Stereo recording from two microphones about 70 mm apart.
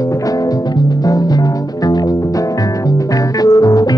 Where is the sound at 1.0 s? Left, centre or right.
Left.